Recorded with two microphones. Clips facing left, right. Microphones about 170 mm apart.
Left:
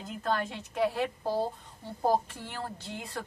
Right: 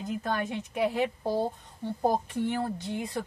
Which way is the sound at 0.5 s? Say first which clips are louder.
Right 1 dB; 15° right (ahead or behind).